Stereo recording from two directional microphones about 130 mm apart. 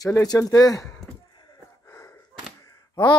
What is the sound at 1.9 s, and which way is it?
Gasp, 20° left (ahead or behind).